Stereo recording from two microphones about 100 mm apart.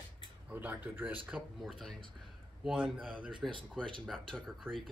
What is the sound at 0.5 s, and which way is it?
Speech, 20° right (ahead or behind).